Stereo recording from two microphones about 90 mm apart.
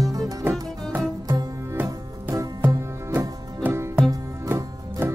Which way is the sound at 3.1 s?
25° right (ahead or behind).